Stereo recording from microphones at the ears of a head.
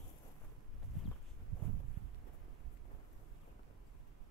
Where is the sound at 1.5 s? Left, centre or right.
Right.